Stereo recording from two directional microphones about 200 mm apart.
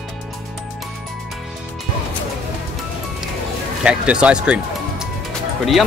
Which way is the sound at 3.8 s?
5° right (ahead or behind).